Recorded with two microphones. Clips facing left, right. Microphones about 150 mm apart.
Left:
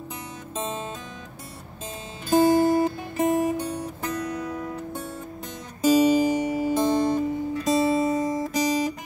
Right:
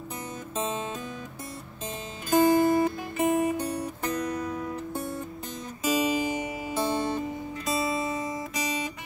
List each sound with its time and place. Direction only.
2.2 s music: 30° left (ahead or behind)
5.8 s music: 40° left (ahead or behind)
7.6 s guitar: 40° left (ahead or behind)